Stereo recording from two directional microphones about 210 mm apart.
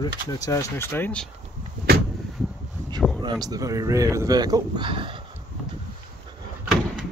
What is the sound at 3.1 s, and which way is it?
Speech, 20° right (ahead or behind).